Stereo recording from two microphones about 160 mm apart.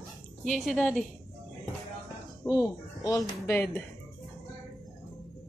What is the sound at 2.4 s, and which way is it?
Speech, 20° left (ahead or behind).